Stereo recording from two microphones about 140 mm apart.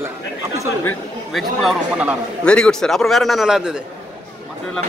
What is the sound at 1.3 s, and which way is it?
Speech, 5° right (ahead or behind).